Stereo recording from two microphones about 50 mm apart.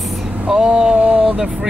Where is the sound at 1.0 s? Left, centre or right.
Right.